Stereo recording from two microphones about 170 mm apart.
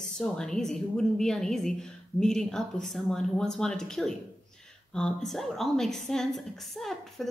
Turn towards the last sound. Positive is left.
turn(degrees=0)  # may be behind; listen again after turning